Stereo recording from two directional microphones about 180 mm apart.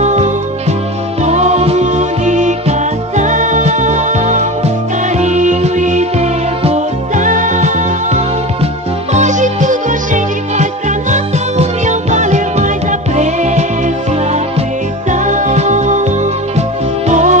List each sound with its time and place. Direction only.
0.0 s music: 40° right (ahead or behind)
15.2 s music: 45° right (ahead or behind)
17.1 s music: 40° right (ahead or behind)